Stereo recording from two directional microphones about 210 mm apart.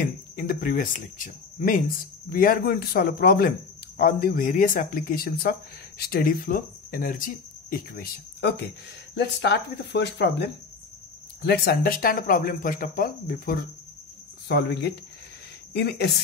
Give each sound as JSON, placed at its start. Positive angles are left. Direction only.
{"t": 0.0, "sound": "speech", "side_deg": 45}